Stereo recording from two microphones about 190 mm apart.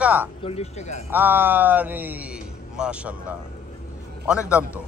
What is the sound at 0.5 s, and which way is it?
Speech, 35° left (ahead or behind).